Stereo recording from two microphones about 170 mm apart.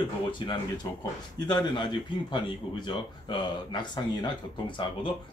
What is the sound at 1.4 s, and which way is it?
Speech, 25° left (ahead or behind).